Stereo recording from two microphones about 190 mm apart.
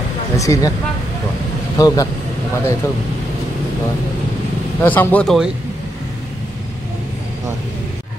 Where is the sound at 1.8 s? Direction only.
20° left (ahead or behind).